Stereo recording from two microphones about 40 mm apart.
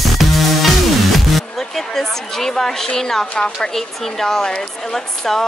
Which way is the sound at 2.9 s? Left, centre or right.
Centre.